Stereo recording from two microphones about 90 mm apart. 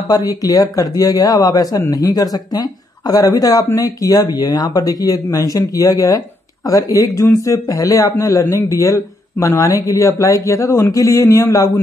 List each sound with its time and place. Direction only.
0.1 s speech: 40° left (ahead or behind)